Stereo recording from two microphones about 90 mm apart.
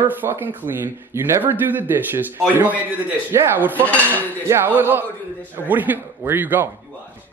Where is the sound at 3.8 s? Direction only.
15° left (ahead or behind).